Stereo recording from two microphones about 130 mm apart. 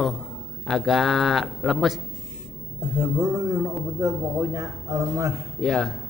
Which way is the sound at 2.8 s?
30° right (ahead or behind).